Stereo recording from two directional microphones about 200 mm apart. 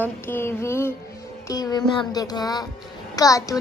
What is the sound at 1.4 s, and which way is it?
Music, 20° left (ahead or behind).